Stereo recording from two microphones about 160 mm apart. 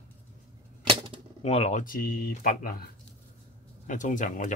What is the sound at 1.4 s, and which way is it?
Speech, 45° left (ahead or behind).